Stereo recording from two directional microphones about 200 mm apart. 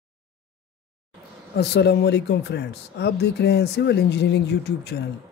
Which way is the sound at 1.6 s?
55° left (ahead or behind).